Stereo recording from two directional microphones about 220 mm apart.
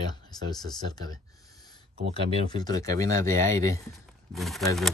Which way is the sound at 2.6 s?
15° left (ahead or behind).